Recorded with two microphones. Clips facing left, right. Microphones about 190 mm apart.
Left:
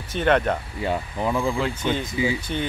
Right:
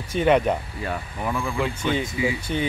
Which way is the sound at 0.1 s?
5° right (ahead or behind).